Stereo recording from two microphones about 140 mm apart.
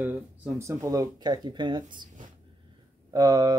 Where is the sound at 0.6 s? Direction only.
20° right (ahead or behind).